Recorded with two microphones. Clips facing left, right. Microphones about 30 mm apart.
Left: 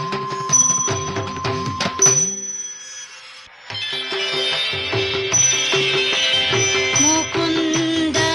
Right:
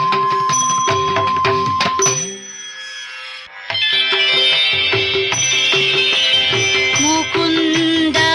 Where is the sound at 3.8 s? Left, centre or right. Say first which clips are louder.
Right 9 dB; right.